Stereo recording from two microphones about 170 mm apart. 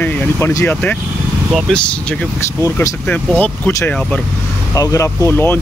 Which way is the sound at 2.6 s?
15° left (ahead or behind).